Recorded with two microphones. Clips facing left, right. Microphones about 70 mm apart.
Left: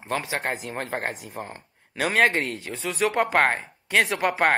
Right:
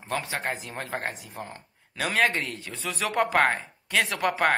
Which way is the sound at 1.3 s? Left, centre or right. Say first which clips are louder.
Left 3 dB; left.